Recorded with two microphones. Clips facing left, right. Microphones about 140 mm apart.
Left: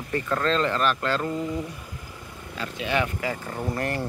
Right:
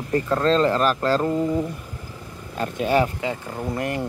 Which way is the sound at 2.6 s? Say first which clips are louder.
Right 6 dB; 45° right (ahead or behind).